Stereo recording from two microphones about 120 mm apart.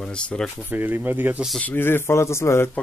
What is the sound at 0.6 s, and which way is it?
Speech, 15° right (ahead or behind).